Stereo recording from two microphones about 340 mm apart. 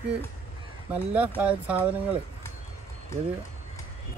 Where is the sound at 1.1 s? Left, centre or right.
Centre.